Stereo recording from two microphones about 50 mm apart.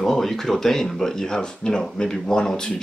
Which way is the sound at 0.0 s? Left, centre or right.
Centre.